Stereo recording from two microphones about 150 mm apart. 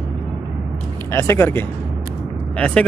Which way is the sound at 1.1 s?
15° left (ahead or behind).